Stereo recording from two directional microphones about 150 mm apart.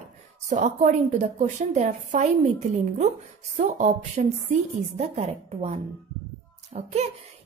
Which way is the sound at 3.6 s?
50° right (ahead or behind).